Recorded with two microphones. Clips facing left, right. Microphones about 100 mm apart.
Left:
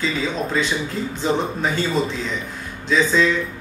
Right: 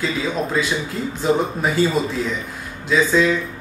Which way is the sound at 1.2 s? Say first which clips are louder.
Right 3 dB; 5° right (ahead or behind).